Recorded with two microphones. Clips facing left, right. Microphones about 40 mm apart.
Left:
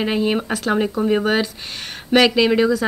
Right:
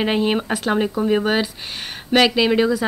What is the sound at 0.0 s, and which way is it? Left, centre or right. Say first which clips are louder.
A woman's voice: even; right.